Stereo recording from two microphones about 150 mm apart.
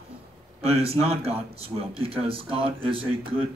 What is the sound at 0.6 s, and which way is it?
Speech, 40° right (ahead or behind).